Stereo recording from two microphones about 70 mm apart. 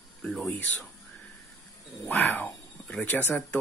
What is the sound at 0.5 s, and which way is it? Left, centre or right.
Speech, left.